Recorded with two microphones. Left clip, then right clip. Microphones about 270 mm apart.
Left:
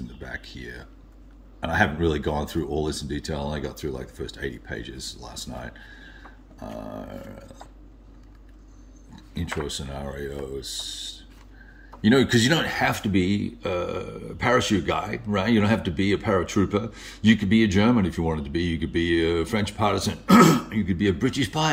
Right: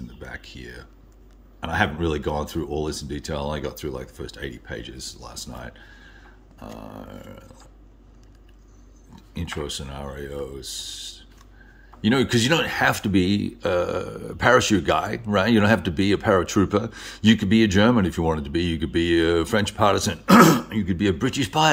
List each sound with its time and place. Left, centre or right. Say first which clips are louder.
0.2 s a sound: left 1 dB; centre
1.6 s speech: left 1 dB; centre
9.1 s speech: left 1 dB; centre